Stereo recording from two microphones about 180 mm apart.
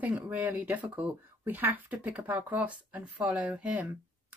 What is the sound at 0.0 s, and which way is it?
Speech, 10° right (ahead or behind).